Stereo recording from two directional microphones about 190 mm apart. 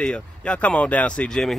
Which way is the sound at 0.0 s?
5° left (ahead or behind).